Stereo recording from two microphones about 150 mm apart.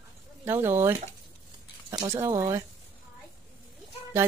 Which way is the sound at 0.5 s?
15° right (ahead or behind).